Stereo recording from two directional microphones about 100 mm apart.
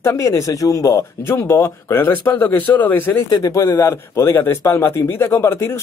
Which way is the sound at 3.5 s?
30° left (ahead or behind).